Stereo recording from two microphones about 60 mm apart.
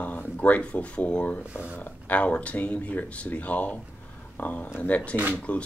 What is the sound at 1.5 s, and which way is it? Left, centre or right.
Speech, right.